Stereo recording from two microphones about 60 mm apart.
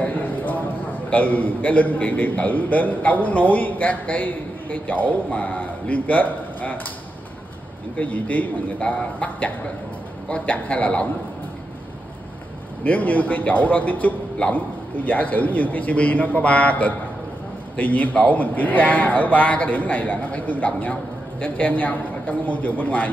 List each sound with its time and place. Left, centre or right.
0.0 s a sound: left
1.1 s a man's voice: left
8.0 s a man's voice: left
12.8 s a man's voice: left